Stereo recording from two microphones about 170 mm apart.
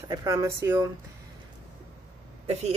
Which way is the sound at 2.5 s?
40° right (ahead or behind).